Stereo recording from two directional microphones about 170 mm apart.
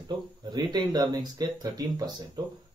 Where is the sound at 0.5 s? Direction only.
25° right (ahead or behind).